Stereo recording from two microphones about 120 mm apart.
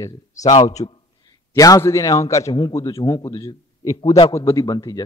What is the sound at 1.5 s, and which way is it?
A man's voice, 25° left (ahead or behind).